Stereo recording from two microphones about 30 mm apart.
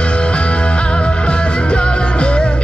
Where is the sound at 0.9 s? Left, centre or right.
Left.